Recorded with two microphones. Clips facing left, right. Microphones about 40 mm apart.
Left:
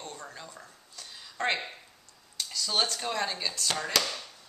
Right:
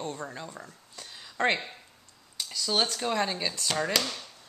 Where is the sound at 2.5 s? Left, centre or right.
Centre.